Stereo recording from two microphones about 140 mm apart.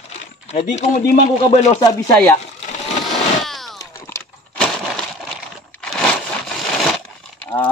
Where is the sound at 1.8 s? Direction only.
25° left (ahead or behind).